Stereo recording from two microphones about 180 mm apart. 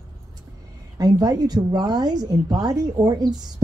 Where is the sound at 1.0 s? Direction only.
20° right (ahead or behind).